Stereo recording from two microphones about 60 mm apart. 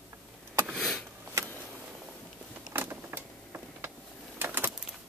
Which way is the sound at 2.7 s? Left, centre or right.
Right.